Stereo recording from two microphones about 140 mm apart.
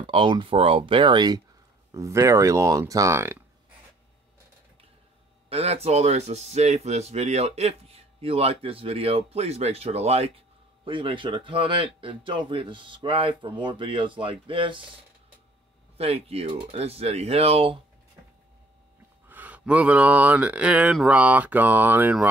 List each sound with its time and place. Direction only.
0.0 s speech: 35° right (ahead or behind); by 3.4 s 20° right (ahead or behind)
5.5 s speech: 45° right (ahead or behind)
10.9 s speech: 35° right (ahead or behind)
16.0 s speech: 45° right (ahead or behind)
19.2 s speech: 10° right (ahead or behind)